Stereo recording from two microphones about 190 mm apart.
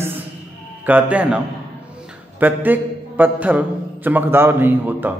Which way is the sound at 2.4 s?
10° right (ahead or behind).